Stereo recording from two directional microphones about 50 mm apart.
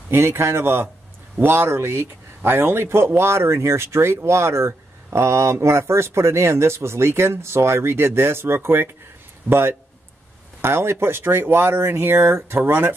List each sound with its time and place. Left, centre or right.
0.1 s speech: right